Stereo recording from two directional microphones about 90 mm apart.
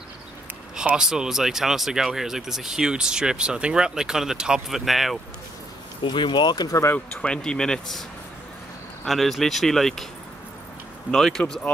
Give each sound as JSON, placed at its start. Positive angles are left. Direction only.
{"t": 0.7, "sound": "speech", "side_deg": -10}
{"t": 6.0, "sound": "speech", "side_deg": 60}
{"t": 7.2, "sound": "speech", "side_deg": 10}
{"t": 9.0, "sound": "speech", "side_deg": 0}
{"t": 11.1, "sound": "speech", "side_deg": 5}